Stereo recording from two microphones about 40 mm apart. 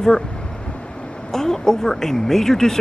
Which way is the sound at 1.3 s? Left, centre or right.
Centre.